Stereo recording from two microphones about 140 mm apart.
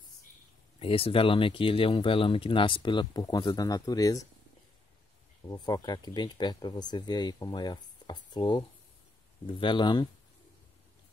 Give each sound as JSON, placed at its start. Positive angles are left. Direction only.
{"t": 0.7, "sound": "speech", "side_deg": 40}
{"t": 5.5, "sound": "speech", "side_deg": 30}